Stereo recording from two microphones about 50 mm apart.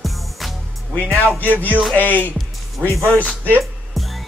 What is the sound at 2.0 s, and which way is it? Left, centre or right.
Speech, left.